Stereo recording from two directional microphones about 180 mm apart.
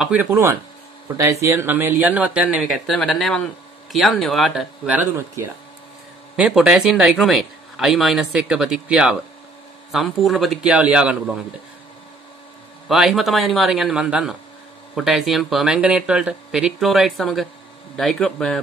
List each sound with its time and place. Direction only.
0.0 s speech: 10° right (ahead or behind)
12.8 s speech: centre (ahead or behind)